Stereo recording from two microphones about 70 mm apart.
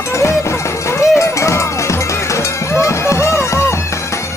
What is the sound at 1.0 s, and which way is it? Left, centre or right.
Music, left.